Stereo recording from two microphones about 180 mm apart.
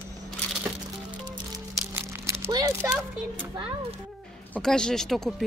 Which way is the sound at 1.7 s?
15° right (ahead or behind).